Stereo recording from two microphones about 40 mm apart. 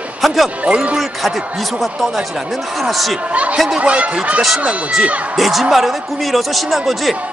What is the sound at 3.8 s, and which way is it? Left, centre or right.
Speech, right.